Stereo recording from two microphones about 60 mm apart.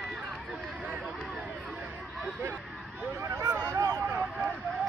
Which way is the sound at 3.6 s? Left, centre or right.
Right.